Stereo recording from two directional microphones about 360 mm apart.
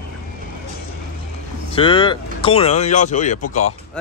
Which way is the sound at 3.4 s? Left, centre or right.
Left.